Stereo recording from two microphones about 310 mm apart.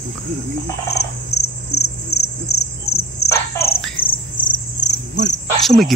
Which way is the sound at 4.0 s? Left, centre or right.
Left.